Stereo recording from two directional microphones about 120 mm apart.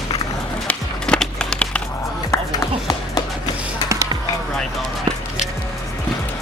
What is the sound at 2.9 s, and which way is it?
Music, 35° left (ahead or behind).